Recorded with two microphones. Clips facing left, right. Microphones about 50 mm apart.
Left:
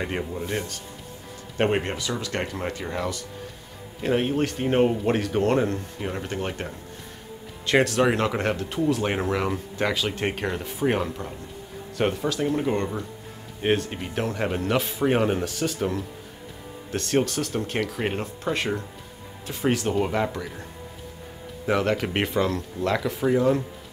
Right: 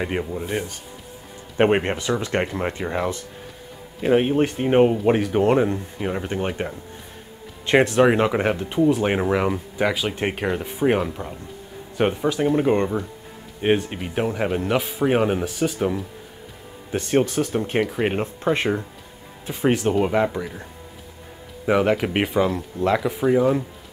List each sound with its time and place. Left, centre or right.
0.0 s speech: centre
1.6 s speech: right
13.6 s speech: centre
21.6 s speech: centre